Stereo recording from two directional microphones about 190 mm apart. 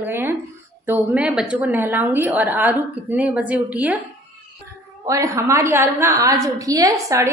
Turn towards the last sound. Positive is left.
turn(degrees=-15)  # may be behind; listen again after turning